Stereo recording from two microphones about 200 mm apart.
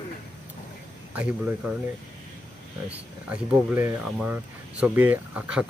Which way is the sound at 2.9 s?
5° right (ahead or behind).